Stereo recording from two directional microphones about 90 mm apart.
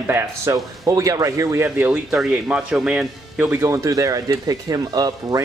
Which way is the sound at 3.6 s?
35° right (ahead or behind).